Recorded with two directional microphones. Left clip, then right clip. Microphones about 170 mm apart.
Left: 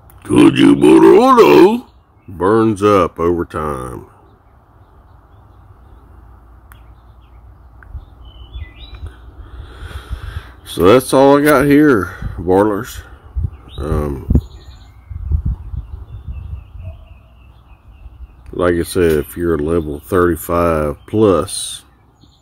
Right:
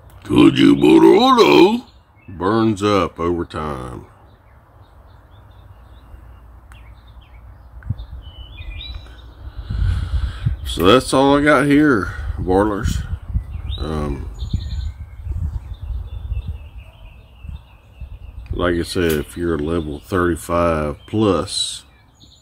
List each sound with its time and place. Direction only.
0.2 s speech: 15° left (ahead or behind)
9.7 s speech: 20° left (ahead or behind)
18.6 s speech: 15° left (ahead or behind)